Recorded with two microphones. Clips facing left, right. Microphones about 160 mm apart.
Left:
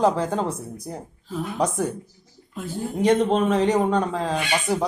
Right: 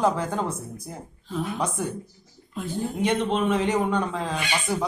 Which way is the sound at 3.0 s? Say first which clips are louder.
Left 6 dB; 40° left (ahead or behind).